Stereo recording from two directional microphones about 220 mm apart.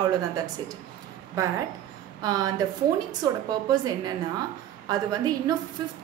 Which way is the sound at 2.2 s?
15° right (ahead or behind).